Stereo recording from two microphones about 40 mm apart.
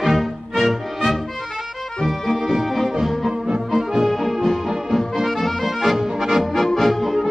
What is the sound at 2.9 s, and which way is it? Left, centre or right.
Music, centre.